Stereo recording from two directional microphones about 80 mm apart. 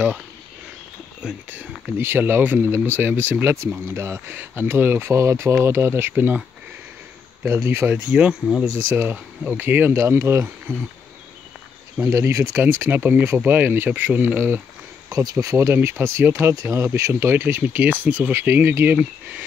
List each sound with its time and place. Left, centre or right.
1.5 s speech: right
7.4 s speech: right
7.9 s speech: centre
9.6 s speech: right
12.0 s speech: right
12.5 s speech: right
15.0 s speech: right